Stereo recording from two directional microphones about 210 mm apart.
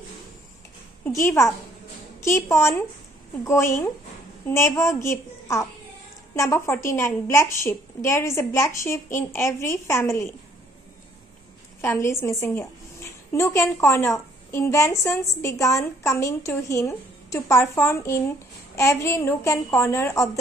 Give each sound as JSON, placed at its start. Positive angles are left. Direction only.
{"t": 1.0, "sound": "a woman's voice", "side_deg": 15}
{"t": 11.8, "sound": "a woman's voice", "side_deg": 15}